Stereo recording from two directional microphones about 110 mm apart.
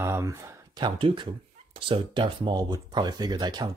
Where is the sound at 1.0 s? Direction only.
45° right (ahead or behind).